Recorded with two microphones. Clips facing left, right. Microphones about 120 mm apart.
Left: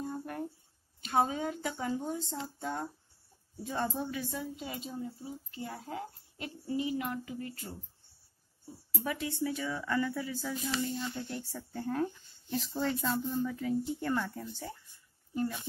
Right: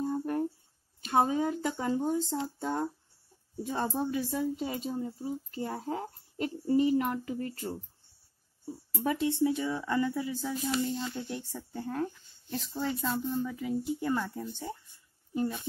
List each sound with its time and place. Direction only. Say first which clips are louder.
0.0 s a sound: right 7 dB; 35° right (ahead or behind)
1.2 s speech: right 4 dB; 40° right (ahead or behind)
2.6 s a woman's voice: right 5 dB; 30° right (ahead or behind)
9.0 s a woman's voice: right 7 dB; 30° right (ahead or behind)
11.7 s speech: left 1 dB; 5° right (ahead or behind)
14.5 s a woman's voice: right 4 dB; 25° right (ahead or behind)